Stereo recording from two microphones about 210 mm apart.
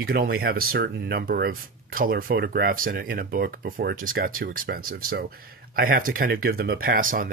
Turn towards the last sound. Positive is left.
turn(degrees=-40)  # may be behind; listen again after turning